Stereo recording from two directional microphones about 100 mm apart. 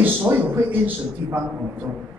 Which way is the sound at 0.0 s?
20° right (ahead or behind).